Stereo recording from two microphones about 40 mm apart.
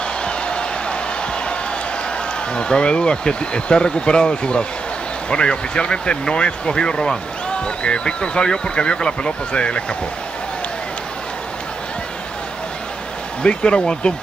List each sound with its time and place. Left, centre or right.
0.2 s a sound: left
2.5 s speech: left
13.4 s speech: left